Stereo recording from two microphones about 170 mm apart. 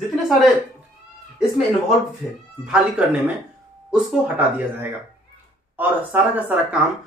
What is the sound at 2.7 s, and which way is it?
Speech, 5° right (ahead or behind).